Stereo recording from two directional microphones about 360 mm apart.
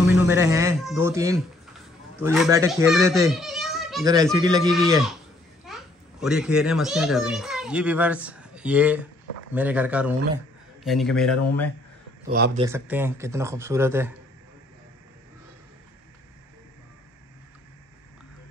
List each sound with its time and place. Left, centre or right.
0.3 s a child's voice: centre
12.3 s speech: right
12.5 s speech: centre